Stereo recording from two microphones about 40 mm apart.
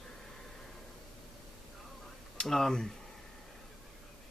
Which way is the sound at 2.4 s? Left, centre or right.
Centre.